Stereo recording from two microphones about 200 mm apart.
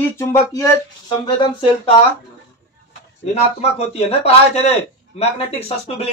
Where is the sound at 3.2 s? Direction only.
30° left (ahead or behind).